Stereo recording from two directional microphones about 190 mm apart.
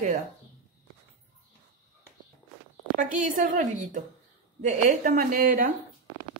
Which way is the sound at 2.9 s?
45° right (ahead or behind).